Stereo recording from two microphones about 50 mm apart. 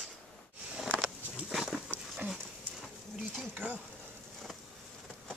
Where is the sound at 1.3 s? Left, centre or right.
Centre.